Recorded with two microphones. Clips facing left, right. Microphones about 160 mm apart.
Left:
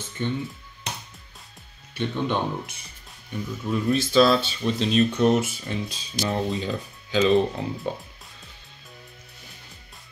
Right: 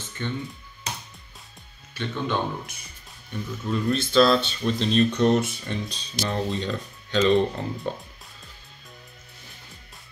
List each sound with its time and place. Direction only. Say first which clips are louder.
0.2 s speech: left 3 dB; 15° left (ahead or behind)
2.0 s speech: left 2 dB; 20° left (ahead or behind); by 7.9 s centre (ahead or behind)